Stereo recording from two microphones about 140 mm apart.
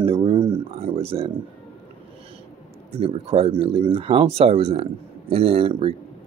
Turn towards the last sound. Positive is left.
turn(degrees=-45)  # may be behind; listen again after turning